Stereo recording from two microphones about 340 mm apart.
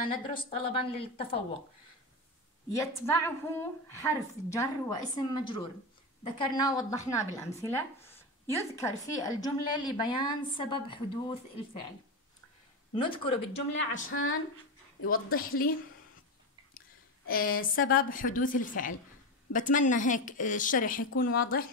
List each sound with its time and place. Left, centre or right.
0.1 s a woman's voice: centre
2.7 s a woman's voice: centre
12.9 s a woman's voice: centre
13.7 s a woman's voice: left
15.3 s a woman's voice: left
17.3 s a woman's voice: left